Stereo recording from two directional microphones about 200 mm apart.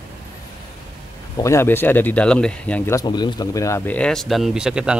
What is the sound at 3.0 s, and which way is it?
Speech, 20° left (ahead or behind).